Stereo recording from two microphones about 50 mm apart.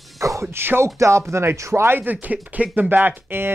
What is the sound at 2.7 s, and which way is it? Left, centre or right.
Speech, right.